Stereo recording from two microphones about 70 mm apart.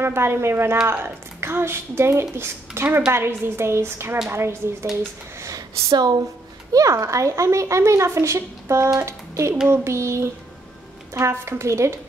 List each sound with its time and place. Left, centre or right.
0.0 s speech: right
5.4 s speech: right
5.9 s speech: right
6.7 s speech: right